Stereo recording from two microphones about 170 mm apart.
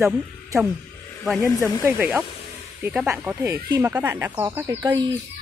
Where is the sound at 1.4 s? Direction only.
20° left (ahead or behind).